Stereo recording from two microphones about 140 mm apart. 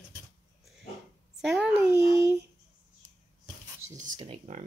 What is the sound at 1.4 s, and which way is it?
Speech, 5° right (ahead or behind).